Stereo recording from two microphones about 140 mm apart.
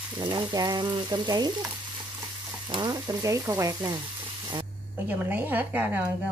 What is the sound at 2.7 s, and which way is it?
Frying, 30° right (ahead or behind).